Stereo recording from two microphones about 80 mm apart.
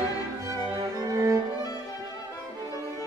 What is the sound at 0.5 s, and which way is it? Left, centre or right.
Music, right.